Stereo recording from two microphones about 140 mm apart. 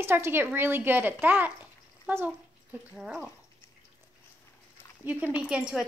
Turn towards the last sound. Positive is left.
turn(degrees=-5)  # may be behind; listen again after turning